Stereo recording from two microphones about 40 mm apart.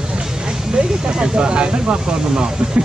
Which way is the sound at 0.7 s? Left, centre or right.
Right.